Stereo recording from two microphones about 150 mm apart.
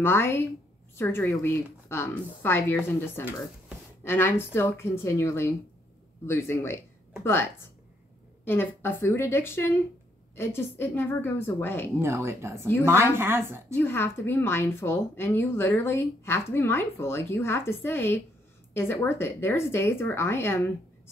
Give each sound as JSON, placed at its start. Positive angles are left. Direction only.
{"t": 0.0, "sound": "a woman's voice", "side_deg": 15}
{"t": 4.0, "sound": "a woman's voice", "side_deg": 15}
{"t": 12.0, "sound": "a woman's voice", "side_deg": -15}
{"t": 12.6, "sound": "a woman's voice", "side_deg": 15}
{"t": 12.9, "sound": "a woman's voice", "side_deg": -15}
{"t": 13.7, "sound": "a woman's voice", "side_deg": 15}